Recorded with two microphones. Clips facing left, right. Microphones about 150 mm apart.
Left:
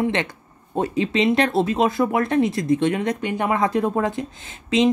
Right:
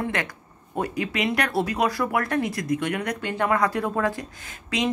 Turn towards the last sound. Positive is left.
turn(degrees=25)  # may be behind; listen again after turning